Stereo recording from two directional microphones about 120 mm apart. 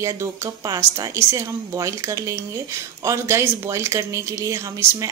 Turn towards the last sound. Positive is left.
turn(degrees=-25)  # may be behind; listen again after turning